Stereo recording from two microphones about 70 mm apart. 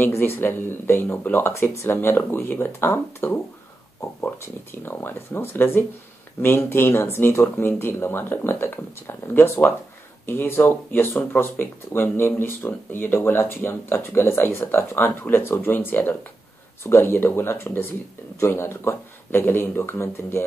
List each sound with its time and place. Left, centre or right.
0.0 s speech: left